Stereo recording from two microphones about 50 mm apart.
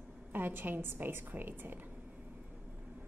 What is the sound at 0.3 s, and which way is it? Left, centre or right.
A woman's voice, right.